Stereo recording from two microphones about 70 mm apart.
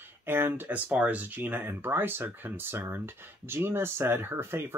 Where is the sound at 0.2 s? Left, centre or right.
Right.